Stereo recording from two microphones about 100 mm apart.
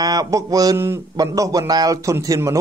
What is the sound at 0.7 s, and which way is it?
Speech, 25° right (ahead or behind).